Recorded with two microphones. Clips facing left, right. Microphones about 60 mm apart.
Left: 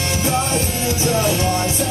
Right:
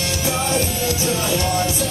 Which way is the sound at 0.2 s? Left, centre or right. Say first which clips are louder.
Left 1 dB; left.